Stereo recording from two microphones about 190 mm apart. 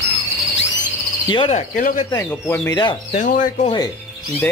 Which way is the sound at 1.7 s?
45° left (ahead or behind).